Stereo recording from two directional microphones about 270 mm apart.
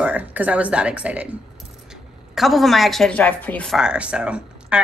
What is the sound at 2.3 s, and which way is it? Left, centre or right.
Speech, centre.